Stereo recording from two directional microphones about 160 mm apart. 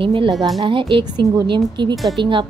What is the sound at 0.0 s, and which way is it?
A woman's voice, 30° right (ahead or behind).